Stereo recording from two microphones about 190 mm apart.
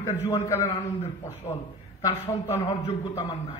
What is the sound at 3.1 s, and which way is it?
Speech, 30° left (ahead or behind).